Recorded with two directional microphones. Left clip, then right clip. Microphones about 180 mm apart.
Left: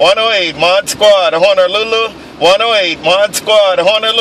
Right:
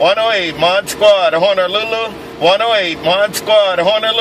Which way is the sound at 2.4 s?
25° left (ahead or behind).